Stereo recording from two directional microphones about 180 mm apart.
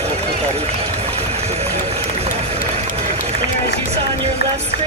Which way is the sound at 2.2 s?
35° right (ahead or behind).